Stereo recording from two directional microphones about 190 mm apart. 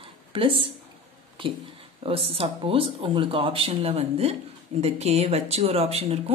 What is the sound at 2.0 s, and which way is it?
Speech, 30° right (ahead or behind).